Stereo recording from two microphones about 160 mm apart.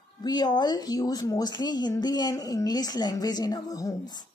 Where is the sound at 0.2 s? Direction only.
25° left (ahead or behind).